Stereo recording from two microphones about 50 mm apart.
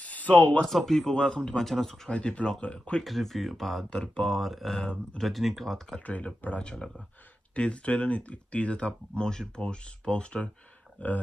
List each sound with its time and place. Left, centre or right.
0.0 s speech: left
0.7 s speech: centre
2.0 s speech: left
3.0 s speech: centre
3.9 s speech: centre
4.2 s speech: centre
5.9 s speech: left
6.6 s speech: centre
11.0 s speech: left